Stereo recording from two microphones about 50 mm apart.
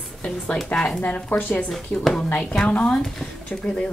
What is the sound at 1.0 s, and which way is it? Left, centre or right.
Speech, left.